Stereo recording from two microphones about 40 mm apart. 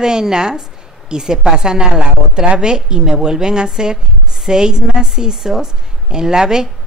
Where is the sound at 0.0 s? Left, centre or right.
Centre.